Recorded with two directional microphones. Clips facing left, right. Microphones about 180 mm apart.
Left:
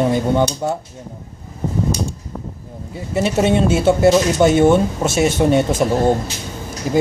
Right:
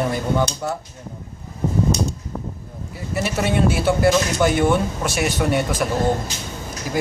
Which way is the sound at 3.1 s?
25° left (ahead or behind).